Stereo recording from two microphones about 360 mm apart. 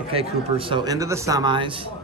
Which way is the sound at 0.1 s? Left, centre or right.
Centre.